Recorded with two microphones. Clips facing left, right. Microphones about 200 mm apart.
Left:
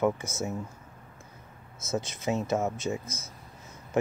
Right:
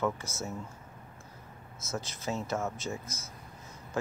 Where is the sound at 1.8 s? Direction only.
20° left (ahead or behind).